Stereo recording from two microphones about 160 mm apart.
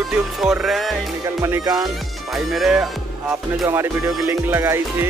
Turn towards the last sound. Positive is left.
turn(degrees=-15)  # may be behind; listen again after turning